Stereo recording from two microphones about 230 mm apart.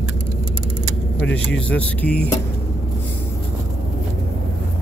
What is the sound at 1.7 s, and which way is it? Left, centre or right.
Speech, centre.